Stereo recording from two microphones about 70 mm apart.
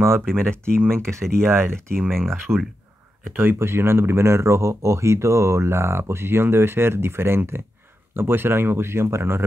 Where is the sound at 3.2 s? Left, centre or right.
Right.